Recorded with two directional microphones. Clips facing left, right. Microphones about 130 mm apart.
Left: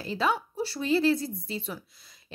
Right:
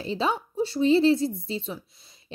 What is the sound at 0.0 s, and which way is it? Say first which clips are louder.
Speech: right 1 dB; 25° right (ahead or behind).